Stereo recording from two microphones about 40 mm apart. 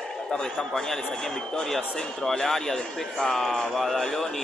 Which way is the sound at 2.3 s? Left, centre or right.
Centre.